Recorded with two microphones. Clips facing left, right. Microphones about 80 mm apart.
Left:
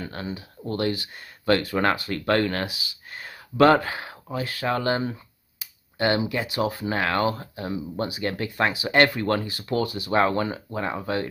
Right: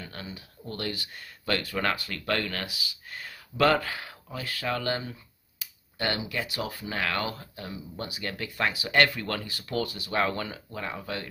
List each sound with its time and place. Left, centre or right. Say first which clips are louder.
0.0 s speech: left 8 dB; left